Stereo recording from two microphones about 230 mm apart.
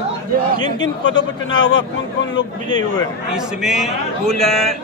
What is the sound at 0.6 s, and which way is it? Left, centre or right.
Speech, left.